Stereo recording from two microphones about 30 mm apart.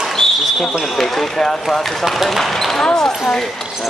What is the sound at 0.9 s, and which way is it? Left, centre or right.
Speech, centre.